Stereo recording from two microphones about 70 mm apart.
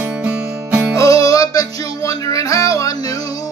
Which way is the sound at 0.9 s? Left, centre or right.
Left.